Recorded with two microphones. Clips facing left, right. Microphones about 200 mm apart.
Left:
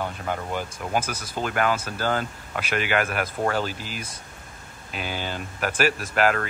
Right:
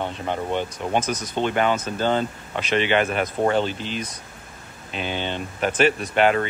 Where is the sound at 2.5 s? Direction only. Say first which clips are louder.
Right 4 dB; 5° left (ahead or behind).